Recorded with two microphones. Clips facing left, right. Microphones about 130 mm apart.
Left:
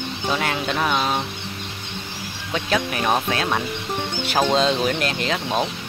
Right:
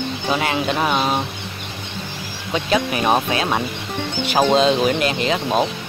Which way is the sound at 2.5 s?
5° right (ahead or behind).